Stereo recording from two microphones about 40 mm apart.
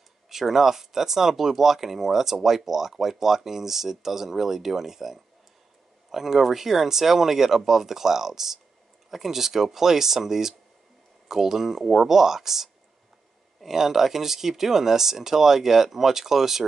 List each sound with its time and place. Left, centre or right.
0.3 s speech: centre